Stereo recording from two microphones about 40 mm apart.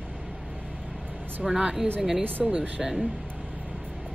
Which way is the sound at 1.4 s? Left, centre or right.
Centre.